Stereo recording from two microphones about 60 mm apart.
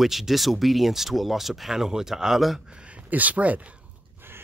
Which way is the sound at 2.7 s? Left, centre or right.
Centre.